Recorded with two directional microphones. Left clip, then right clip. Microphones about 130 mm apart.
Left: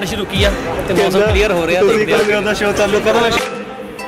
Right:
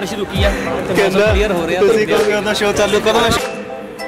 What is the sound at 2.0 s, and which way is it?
Speech, 20° right (ahead or behind).